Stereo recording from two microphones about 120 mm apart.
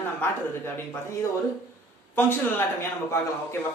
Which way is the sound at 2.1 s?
20° left (ahead or behind).